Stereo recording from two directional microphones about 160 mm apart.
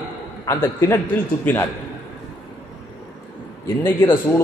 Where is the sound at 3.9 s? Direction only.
15° left (ahead or behind).